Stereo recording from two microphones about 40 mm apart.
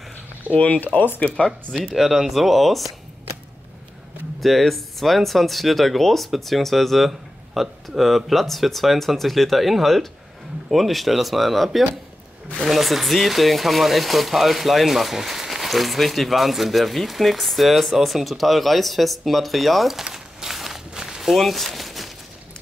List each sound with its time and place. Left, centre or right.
0.5 s speech: left
0.9 s speech: left
2.0 s speech: centre
4.4 s speech: centre
7.1 s speech: centre
20.1 s walk: centre
21.4 s a sound: centre